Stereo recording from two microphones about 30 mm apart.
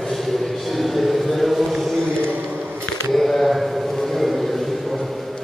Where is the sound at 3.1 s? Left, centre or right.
Centre.